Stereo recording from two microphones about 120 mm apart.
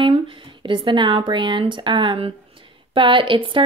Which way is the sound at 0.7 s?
40° right (ahead or behind).